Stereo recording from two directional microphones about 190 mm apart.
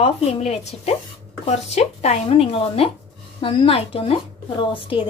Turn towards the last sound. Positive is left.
turn(degrees=30)  # may be behind; listen again after turning